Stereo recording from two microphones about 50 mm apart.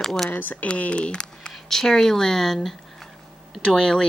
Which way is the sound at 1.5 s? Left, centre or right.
Centre.